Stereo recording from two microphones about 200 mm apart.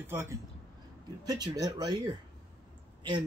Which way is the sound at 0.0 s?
10° right (ahead or behind).